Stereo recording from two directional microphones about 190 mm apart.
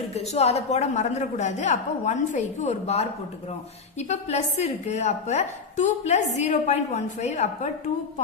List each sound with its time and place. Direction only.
0.1 s a woman's voice: 35° left (ahead or behind)
4.1 s a woman's voice: 35° left (ahead or behind)